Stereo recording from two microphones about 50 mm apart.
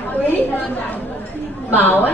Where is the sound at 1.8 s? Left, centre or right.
Left.